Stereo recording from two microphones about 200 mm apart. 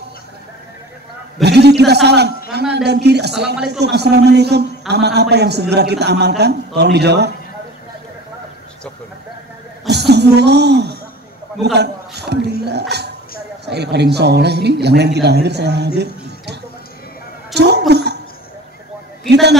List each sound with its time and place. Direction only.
1.4 s a man's voice: 55° right (ahead or behind)
9.8 s a man's voice: 55° right (ahead or behind)
17.6 s a sound: 55° right (ahead or behind)
19.2 s a man's voice: 55° right (ahead or behind)